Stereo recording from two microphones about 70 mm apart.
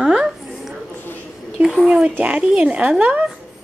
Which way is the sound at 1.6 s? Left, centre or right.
Centre.